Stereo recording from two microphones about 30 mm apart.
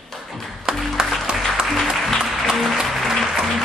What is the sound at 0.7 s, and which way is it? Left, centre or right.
Music, right.